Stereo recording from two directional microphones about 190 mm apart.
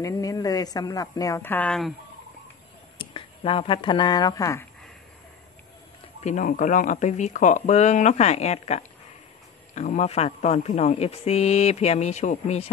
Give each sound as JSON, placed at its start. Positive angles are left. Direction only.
{"t": 0.0, "sound": "a woman's voice", "side_deg": 20}
{"t": 3.0, "sound": "speech", "side_deg": 25}
{"t": 6.2, "sound": "speech", "side_deg": 45}